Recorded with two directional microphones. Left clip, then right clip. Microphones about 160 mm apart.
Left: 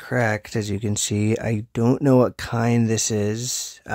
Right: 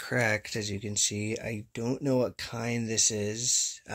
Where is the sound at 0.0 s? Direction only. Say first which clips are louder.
Left 5 dB; 40° left (ahead or behind).